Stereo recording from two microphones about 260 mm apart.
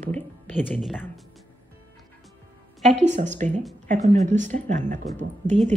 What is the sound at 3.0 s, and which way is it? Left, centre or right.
Speech, right.